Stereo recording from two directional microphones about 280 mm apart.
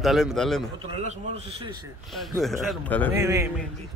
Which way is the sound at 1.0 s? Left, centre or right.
Right.